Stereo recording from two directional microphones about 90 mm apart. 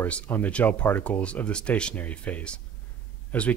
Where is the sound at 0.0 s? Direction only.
20° left (ahead or behind).